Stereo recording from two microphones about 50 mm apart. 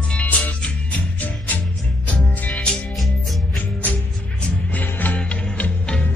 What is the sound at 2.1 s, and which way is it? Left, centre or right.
Music, left.